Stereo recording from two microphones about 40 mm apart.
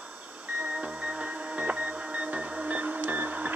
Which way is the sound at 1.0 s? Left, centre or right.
Right.